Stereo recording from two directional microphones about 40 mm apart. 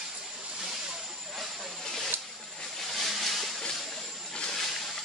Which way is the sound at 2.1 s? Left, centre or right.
Right.